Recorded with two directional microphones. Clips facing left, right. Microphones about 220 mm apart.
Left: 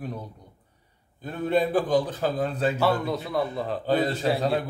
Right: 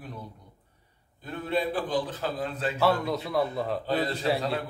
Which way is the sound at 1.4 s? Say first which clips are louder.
Left 6 dB; 45° left (ahead or behind).